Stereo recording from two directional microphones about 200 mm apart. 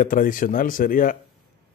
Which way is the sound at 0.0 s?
40° left (ahead or behind).